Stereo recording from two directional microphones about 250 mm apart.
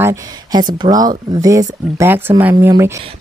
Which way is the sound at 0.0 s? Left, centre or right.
Centre.